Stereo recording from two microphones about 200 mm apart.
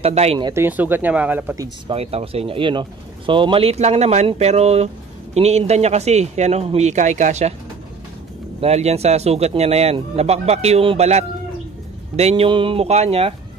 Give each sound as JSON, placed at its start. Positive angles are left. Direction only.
{"t": 0.0, "sound": "speech", "side_deg": -30}
{"t": 0.5, "sound": "speech", "side_deg": -10}
{"t": 2.0, "sound": "speech", "side_deg": -30}
{"t": 8.5, "sound": "speech", "side_deg": -30}